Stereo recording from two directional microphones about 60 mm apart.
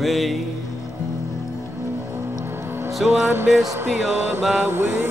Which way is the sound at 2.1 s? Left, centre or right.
Right.